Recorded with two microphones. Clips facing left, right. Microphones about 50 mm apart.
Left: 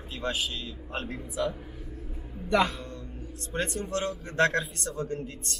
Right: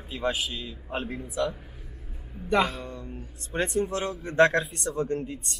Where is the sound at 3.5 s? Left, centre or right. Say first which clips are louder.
Right 4 dB; centre.